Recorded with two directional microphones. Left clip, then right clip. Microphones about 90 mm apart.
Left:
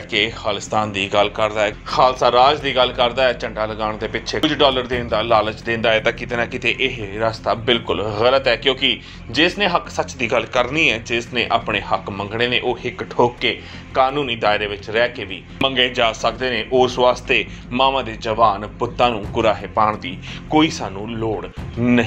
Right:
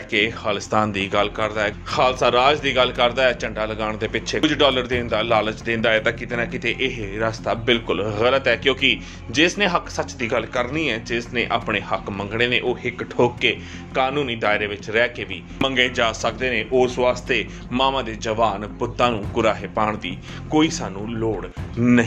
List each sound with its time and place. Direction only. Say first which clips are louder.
0.1 s speech: left 1 dB; 70° right (ahead or behind)
1.3 s speech: left 4 dB; 10° right (ahead or behind)
1.9 s a man's voice: left 3 dB; 55° right (ahead or behind); by 5.9 s 35° right (ahead or behind)
5.9 s speech: left 2 dB; 15° right (ahead or behind)
6.8 s a man's voice: left 3 dB; 35° right (ahead or behind); by 9.5 s 55° right (ahead or behind)
9.6 s speech: left 2 dB; 40° right (ahead or behind)
9.9 s speech: left 4 dB; 15° right (ahead or behind)
10.5 s speech: left 6 dB; centre (ahead or behind)
11.1 s speech: left 3 dB; 20° right (ahead or behind)
11.6 s a man's voice: left 3 dB; 40° right (ahead or behind)
14.2 s speech: left 3 dB; 25° right (ahead or behind)
19.7 s a man's voice: left 5 dB; 50° right (ahead or behind)
20.5 s speech: left 3 dB; 20° right (ahead or behind)